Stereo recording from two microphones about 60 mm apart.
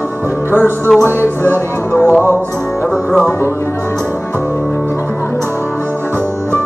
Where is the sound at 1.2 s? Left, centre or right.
Left.